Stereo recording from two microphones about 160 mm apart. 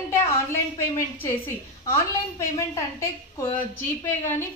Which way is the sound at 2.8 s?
20° left (ahead or behind).